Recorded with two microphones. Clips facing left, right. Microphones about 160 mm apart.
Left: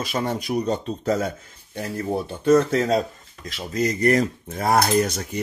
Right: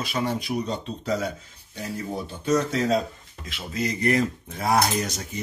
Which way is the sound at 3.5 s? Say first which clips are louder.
Left 5 dB; 40° left (ahead or behind).